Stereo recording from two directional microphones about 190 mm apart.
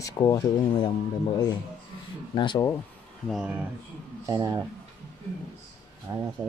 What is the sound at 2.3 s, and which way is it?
Speech, 20° left (ahead or behind).